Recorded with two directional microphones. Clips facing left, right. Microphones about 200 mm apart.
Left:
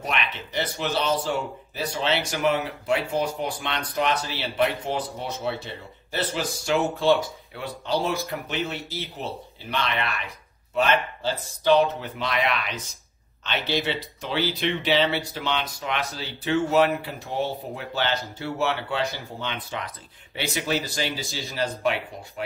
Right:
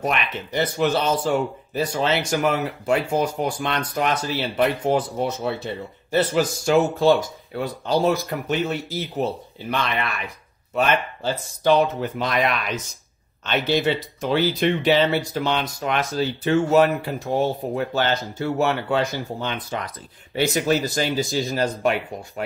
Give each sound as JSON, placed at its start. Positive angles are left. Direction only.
{"t": 0.0, "sound": "speech", "side_deg": -45}
{"t": 12.2, "sound": "speech", "side_deg": -45}